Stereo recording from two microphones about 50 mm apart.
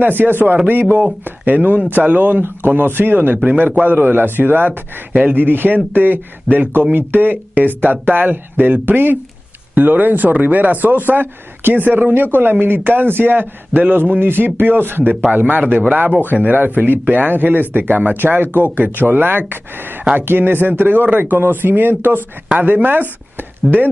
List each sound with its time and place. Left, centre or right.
0.0 s a man's voice: right
15.6 s a man's voice: right